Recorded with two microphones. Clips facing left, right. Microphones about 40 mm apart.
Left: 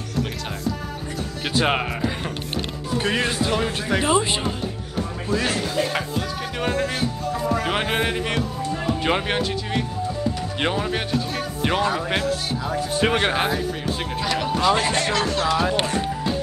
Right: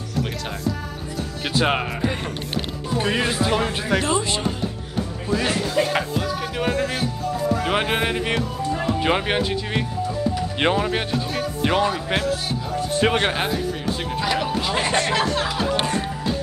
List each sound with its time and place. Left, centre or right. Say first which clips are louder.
1.6 s a man's voice: even; centre
3.0 s a man's voice: right 1 dB; centre
4.0 s speech: left 2 dB; centre
5.3 s a man's voice: right 1 dB; centre
6.6 s a man's voice: even; centre
10.6 s speech: right 3 dB; centre
11.6 s a man's voice: right 1 dB; centre